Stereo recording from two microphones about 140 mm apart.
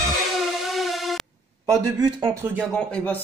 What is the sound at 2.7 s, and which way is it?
Speech, 5° left (ahead or behind).